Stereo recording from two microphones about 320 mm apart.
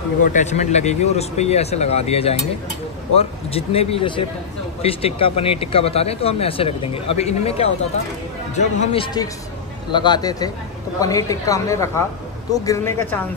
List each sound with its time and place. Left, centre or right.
0.2 s speech: left; by 13.2 s centre